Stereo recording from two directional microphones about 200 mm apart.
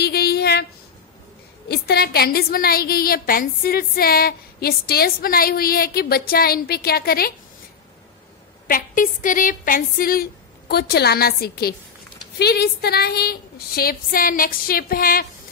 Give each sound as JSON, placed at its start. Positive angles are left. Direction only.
{"t": 0.0, "sound": "a sound", "side_deg": 50}
{"t": 1.7, "sound": "a woman's voice", "side_deg": 50}
{"t": 8.6, "sound": "a woman's voice", "side_deg": 45}